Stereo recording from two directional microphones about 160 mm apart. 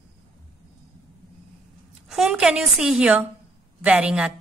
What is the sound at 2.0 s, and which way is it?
A woman's voice, centre (ahead or behind).